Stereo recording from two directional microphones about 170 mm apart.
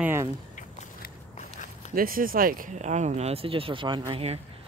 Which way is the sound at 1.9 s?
55° right (ahead or behind).